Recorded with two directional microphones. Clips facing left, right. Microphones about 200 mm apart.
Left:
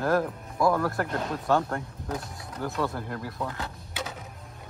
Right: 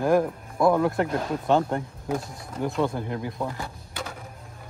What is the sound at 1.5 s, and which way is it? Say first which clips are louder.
Speech: right 3 dB; 20° right (ahead or behind).